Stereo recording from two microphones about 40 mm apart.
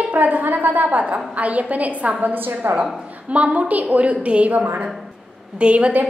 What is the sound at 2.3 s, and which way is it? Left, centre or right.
Speech, right.